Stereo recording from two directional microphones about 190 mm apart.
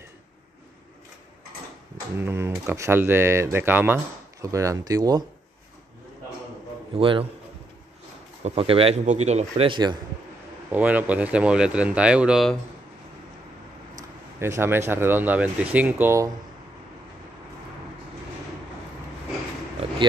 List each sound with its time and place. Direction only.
2.1 s speech: 15° right (ahead or behind)
7.0 s a man's voice: 25° right (ahead or behind)
8.5 s speech: 30° right (ahead or behind)
10.7 s speech: 10° right (ahead or behind)
14.4 s speech: 15° right (ahead or behind)